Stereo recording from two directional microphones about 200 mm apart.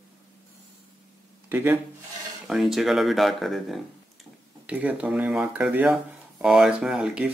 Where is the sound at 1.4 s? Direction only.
10° right (ahead or behind).